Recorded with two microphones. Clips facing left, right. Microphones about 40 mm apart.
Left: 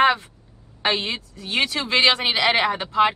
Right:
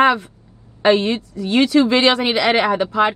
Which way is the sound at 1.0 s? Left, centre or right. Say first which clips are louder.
Right 8 dB; left.